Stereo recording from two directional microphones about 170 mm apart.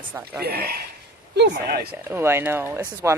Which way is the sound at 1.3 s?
80° right.